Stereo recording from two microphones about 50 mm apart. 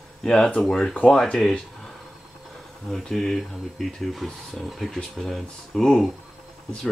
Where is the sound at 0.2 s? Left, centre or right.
Centre.